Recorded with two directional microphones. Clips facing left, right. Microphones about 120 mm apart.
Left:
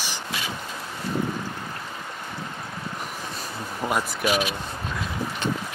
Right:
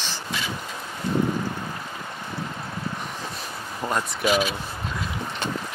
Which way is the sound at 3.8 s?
5° left (ahead or behind).